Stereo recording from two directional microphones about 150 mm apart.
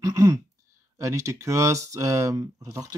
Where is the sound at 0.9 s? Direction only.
20° right (ahead or behind).